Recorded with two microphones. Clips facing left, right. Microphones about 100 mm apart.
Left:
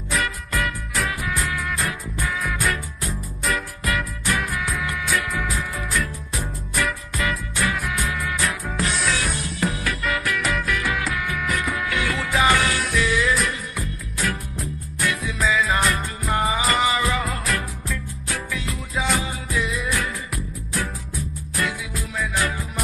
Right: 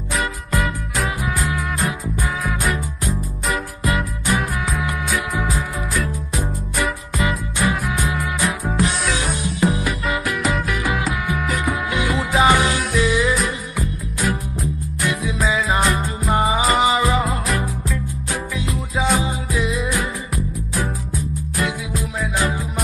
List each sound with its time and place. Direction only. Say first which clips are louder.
0.9 s music: right 2 dB; 10° right (ahead or behind)
3.8 s music: right 5 dB; 20° right (ahead or behind)
4.4 s music: right 3 dB; 5° right (ahead or behind)
6.8 s music: right 3 dB; 20° right (ahead or behind)
8.7 s music: right 3 dB; 5° right (ahead or behind)
9.1 s music: right 3 dB; 15° right (ahead or behind)